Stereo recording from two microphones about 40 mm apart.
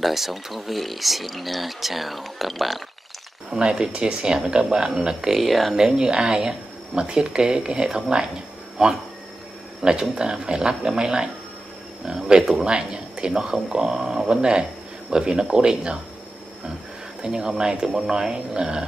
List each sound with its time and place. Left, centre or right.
0.0 s speech: centre
3.4 s speech: centre
5.4 s speech: centre
5.8 s speech: centre
17.2 s speech: centre